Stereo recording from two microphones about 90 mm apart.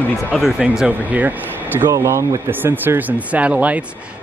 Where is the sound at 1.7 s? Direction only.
30° right (ahead or behind).